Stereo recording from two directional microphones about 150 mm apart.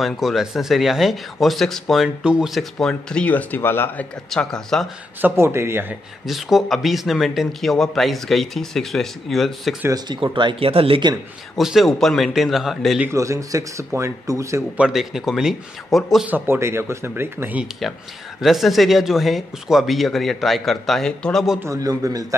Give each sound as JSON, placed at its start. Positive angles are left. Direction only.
{"t": 0.0, "sound": "speech", "side_deg": 0}
{"t": 5.2, "sound": "speech", "side_deg": -15}
{"t": 6.2, "sound": "speech", "side_deg": 0}
{"t": 9.9, "sound": "speech", "side_deg": -30}
{"t": 11.5, "sound": "speech", "side_deg": 0}
{"t": 13.1, "sound": "speech", "side_deg": -20}
{"t": 14.8, "sound": "speech", "side_deg": -5}
{"t": 16.3, "sound": "speech", "side_deg": -15}
{"t": 18.4, "sound": "speech", "side_deg": 0}
{"t": 21.6, "sound": "speech", "side_deg": -25}